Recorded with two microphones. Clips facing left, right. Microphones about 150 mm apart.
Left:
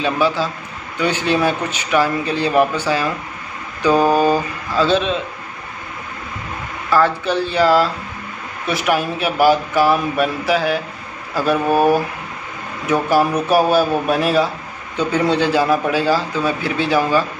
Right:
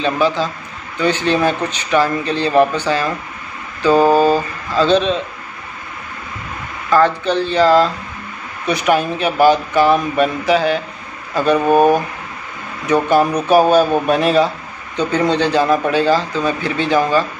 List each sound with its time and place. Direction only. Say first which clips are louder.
0.0 s a man's voice: right 1 dB; 5° left (ahead or behind)
6.9 s a man's voice: right 2 dB; 10° left (ahead or behind)
11.6 s speech: right 3 dB; 20° right (ahead or behind)
12.8 s a man's voice: right 2 dB; 5° left (ahead or behind)